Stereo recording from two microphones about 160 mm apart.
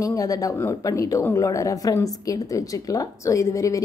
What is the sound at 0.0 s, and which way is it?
A woman's voice, 20° left (ahead or behind).